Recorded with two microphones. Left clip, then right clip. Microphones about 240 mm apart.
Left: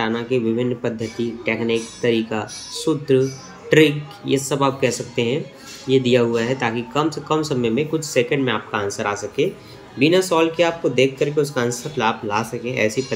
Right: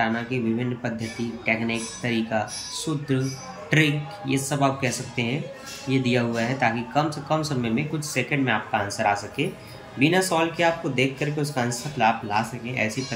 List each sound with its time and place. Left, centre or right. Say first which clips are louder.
0.0 s speech: left 4 dB; centre